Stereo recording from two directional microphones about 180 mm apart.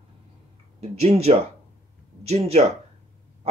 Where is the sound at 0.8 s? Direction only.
35° right (ahead or behind).